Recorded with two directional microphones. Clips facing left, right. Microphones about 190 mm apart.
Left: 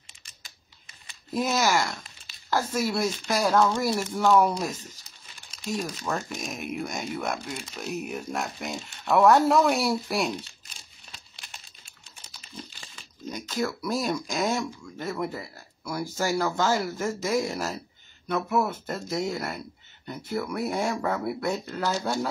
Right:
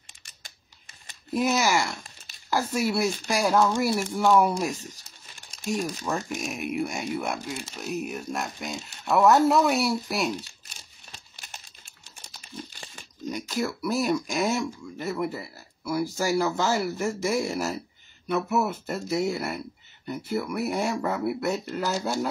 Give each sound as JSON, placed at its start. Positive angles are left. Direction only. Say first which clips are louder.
{"t": 1.3, "sound": "speech", "louder": "right 1 dB", "side_deg": -5}
{"t": 5.9, "sound": "speech", "louder": "right 2 dB", "side_deg": 0}
{"t": 11.3, "sound": "crumpling", "louder": "right 2 dB", "side_deg": -45}
{"t": 13.3, "sound": "speech", "louder": "even", "side_deg": -5}